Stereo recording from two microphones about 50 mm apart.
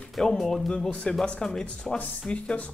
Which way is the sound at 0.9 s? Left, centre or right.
Left.